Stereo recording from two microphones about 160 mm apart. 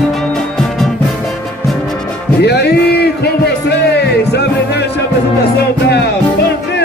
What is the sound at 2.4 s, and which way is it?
Music, 90° left.